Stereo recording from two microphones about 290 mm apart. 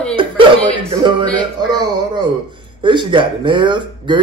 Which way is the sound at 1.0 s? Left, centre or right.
Centre.